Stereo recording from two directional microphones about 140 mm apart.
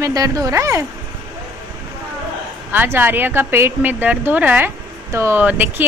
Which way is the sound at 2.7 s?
15° right (ahead or behind).